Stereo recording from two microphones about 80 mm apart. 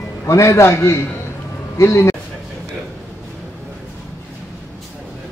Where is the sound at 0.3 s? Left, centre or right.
Left.